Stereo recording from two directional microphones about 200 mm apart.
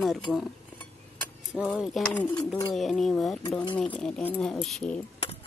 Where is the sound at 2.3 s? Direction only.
20° left (ahead or behind).